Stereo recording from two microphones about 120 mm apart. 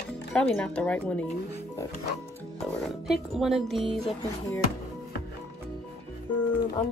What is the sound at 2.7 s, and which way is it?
Speech, centre (ahead or behind).